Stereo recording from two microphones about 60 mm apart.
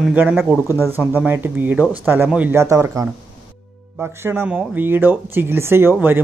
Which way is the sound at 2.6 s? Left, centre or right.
Right.